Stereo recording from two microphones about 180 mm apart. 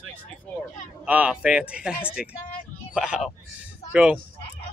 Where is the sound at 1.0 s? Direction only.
5° right (ahead or behind).